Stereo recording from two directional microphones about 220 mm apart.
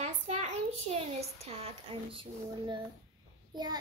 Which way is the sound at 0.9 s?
25° right (ahead or behind).